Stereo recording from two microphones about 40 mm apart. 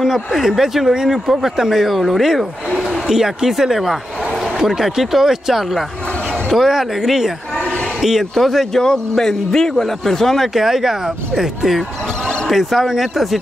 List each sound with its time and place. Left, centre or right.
0.0 s speech: centre
2.8 s a sound: centre
4.6 s speech: centre
7.6 s a sound: left
8.0 s speech: centre
8.7 s a man's voice: centre